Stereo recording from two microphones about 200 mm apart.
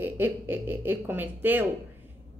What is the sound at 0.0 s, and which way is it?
Speech, 10° right (ahead or behind).